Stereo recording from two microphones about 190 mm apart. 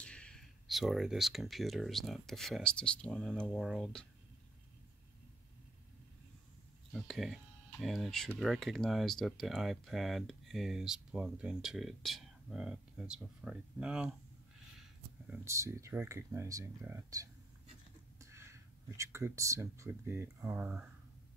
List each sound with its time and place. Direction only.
0.0 s speech: 5° left (ahead or behind)
6.9 s speech: centre (ahead or behind)